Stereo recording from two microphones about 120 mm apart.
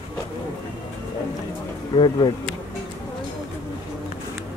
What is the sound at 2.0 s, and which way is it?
Speech, 40° left (ahead or behind).